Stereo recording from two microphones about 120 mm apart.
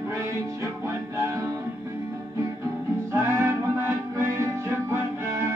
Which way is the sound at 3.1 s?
25° right (ahead or behind).